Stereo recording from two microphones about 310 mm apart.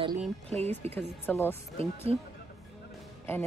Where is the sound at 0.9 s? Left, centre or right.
Centre.